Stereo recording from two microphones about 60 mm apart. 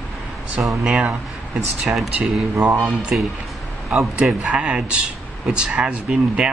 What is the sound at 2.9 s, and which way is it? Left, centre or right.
Speech, centre.